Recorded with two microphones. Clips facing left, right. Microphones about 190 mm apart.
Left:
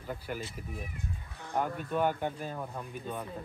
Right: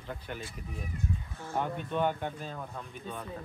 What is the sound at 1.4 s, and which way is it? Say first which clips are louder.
Speech: left 1 dB; 15° left (ahead or behind).